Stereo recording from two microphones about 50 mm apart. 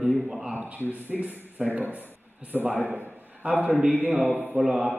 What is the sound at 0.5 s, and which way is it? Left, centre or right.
Speech, right.